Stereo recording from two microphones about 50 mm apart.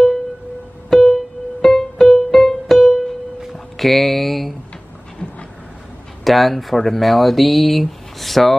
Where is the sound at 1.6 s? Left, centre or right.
Centre.